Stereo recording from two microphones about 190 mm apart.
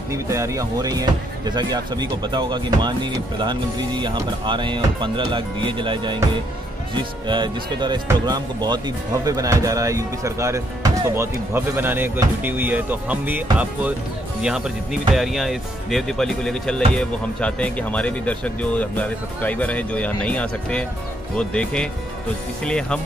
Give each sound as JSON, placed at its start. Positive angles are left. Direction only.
{"t": 0.1, "sound": "speech", "side_deg": -15}